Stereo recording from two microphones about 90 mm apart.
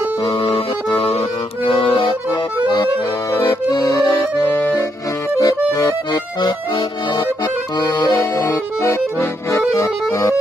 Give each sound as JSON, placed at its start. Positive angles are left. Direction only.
{"t": 0.2, "sound": "accordion", "side_deg": 55}
{"t": 1.6, "sound": "accordion", "side_deg": 80}
{"t": 3.7, "sound": "accordion", "side_deg": 35}
{"t": 4.5, "sound": "accordion", "side_deg": 20}
{"t": 5.4, "sound": "accordion", "side_deg": 40}
{"t": 8.4, "sound": "accordion", "side_deg": 30}
{"t": 9.8, "sound": "music", "side_deg": 40}